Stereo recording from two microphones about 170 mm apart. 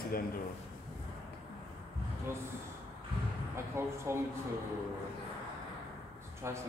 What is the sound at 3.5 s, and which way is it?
Speech, 15° right (ahead or behind).